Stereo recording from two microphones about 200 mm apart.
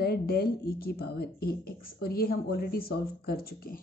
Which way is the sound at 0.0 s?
50° left (ahead or behind).